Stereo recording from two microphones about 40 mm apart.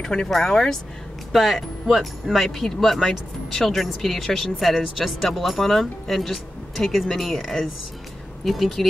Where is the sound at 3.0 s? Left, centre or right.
Centre.